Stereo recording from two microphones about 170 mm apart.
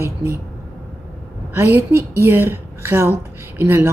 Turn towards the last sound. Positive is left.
turn(degrees=-15)  # may be behind; listen again after turning